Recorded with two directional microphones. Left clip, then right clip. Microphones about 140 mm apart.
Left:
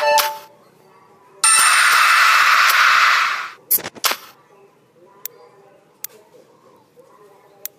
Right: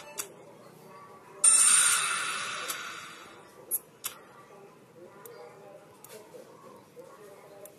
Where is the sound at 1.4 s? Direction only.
45° left (ahead or behind).